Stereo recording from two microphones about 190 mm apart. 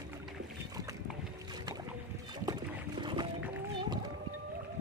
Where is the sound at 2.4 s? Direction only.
25° right (ahead or behind).